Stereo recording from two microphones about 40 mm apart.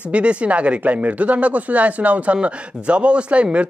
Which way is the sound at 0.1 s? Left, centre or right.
Right.